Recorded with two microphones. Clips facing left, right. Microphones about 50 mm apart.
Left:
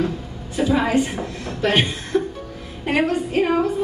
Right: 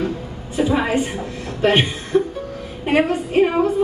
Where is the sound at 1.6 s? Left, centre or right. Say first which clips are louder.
Right 3 dB; right.